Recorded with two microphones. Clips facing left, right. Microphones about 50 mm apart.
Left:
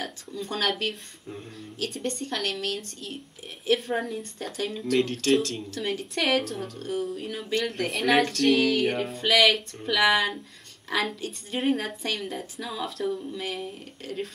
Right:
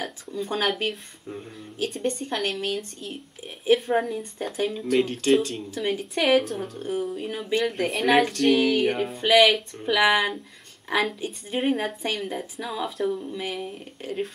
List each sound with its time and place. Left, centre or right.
0.0 s a woman's voice: centre
4.2 s a woman's voice: centre